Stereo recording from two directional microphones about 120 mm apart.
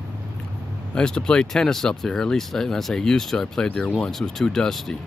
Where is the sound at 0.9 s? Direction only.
5° left (ahead or behind).